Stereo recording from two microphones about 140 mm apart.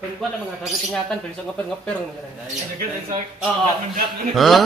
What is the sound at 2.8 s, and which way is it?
Speech, 70° right (ahead or behind).